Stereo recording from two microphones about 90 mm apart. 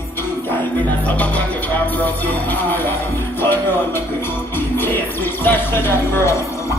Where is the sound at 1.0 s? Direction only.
15° left (ahead or behind).